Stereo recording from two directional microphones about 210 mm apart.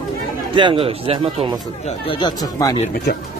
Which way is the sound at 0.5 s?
25° right (ahead or behind).